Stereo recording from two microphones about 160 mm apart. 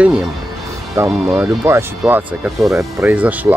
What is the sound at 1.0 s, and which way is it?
Speech, 20° right (ahead or behind).